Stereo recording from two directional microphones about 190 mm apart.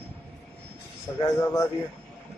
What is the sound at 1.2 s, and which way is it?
Speech, 15° left (ahead or behind).